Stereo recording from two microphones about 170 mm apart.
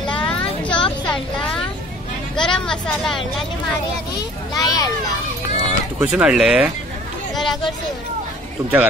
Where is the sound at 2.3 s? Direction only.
5° left (ahead or behind).